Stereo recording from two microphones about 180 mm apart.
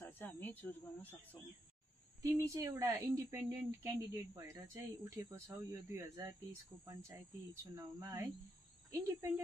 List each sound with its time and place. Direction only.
0.0 s speech: 10° left (ahead or behind)
2.5 s a woman's voice: 15° right (ahead or behind)